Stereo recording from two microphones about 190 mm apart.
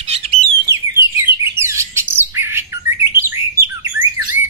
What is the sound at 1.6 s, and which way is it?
Bird, 15° right (ahead or behind).